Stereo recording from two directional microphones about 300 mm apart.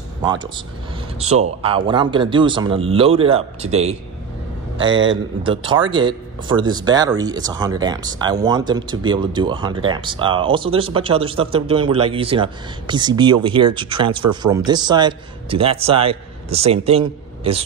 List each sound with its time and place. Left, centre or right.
0.2 s speech: centre
5.4 s speech: centre